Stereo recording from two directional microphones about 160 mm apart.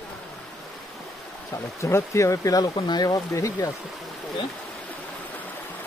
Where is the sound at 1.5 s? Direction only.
15° left (ahead or behind).